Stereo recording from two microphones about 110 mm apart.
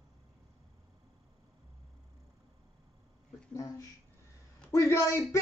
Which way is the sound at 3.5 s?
30° left (ahead or behind).